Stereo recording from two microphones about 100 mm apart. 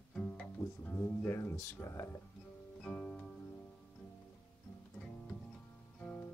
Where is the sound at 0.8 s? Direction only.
20° left (ahead or behind).